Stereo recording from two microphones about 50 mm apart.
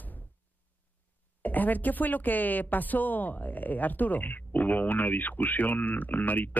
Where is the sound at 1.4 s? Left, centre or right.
Left.